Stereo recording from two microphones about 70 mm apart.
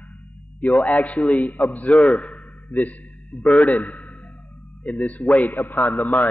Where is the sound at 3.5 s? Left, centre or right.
Centre.